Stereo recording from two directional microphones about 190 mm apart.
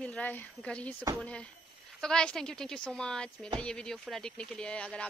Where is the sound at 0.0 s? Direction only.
5° left (ahead or behind).